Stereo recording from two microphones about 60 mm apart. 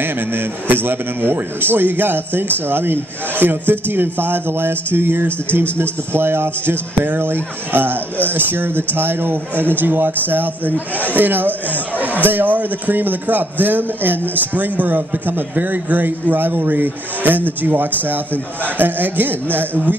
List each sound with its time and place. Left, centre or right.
0.0 s a man's voice: right